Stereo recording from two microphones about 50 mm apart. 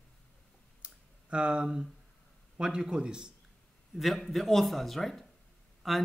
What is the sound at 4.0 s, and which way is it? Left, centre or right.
Speech, centre.